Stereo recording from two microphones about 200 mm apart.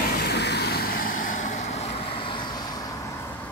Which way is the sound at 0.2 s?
55° left (ahead or behind).